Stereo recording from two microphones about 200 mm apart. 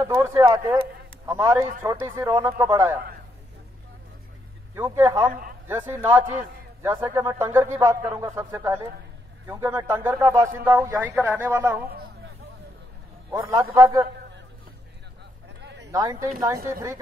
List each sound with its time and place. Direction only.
0.0 s a man's voice: 15° right (ahead or behind)
4.7 s speech: 10° right (ahead or behind)
5.3 s a sound: 45° right (ahead or behind)
5.7 s speech: 10° right (ahead or behind)
13.3 s speech: 15° right (ahead or behind)
15.6 s a sound: 60° right (ahead or behind)
15.9 s speech: 15° right (ahead or behind)